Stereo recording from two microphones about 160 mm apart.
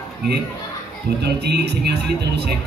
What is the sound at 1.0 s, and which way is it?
Speech, 90° right.